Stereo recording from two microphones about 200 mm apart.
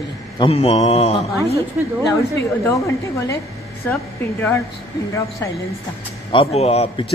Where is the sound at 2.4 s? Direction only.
15° left (ahead or behind).